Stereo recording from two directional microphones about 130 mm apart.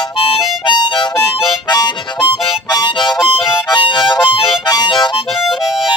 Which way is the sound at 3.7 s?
35° left (ahead or behind).